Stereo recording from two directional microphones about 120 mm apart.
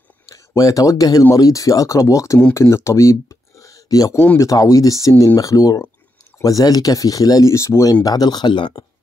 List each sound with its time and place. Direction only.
0.3 s speech: 30° left (ahead or behind)